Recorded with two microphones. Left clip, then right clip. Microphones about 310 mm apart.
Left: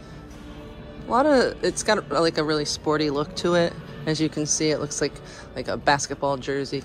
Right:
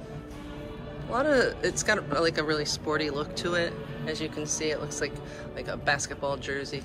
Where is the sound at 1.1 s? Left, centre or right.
Centre.